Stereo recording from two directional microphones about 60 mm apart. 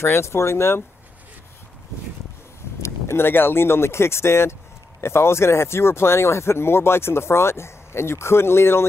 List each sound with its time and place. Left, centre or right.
0.0 s speech: left
2.8 s speech: left